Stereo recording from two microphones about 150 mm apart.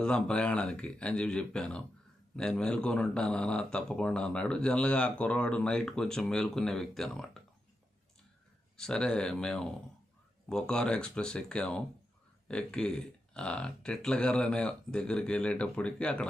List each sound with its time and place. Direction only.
0.0 s speech: 5° left (ahead or behind)
8.7 s speech: 5° left (ahead or behind)